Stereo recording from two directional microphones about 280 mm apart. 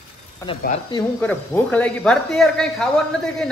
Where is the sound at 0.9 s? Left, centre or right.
Centre.